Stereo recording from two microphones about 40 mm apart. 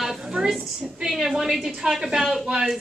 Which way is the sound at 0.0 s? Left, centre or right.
Centre.